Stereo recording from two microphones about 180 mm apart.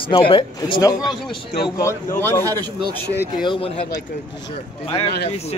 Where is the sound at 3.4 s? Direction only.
30° left (ahead or behind).